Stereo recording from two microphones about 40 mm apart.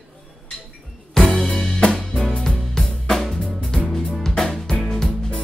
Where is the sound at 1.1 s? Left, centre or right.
Centre.